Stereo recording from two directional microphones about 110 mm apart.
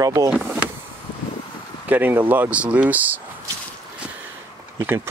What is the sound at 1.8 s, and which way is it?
Speech, 15° right (ahead or behind).